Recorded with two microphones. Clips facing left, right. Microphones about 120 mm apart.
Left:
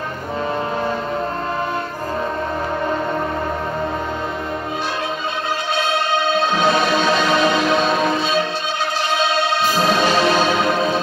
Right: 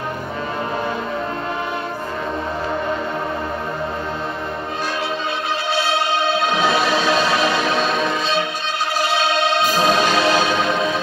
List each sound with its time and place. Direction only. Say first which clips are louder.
6.5 s music: left 1 dB; 5° right (ahead or behind)
9.8 s music: even; 10° right (ahead or behind)
10.0 s music: left 1 dB; 40° left (ahead or behind)